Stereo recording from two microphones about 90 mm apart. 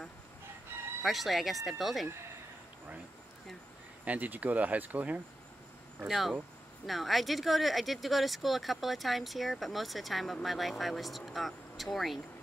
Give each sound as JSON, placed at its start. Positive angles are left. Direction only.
{"t": 0.7, "sound": "fowl", "side_deg": -25}
{"t": 1.0, "sound": "speech", "side_deg": 0}
{"t": 4.0, "sound": "speech", "side_deg": -15}
{"t": 6.0, "sound": "speech", "side_deg": 0}